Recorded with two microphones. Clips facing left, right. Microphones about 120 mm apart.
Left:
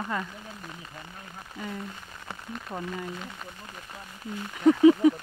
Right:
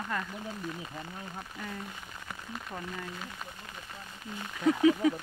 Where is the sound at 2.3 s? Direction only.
25° left (ahead or behind).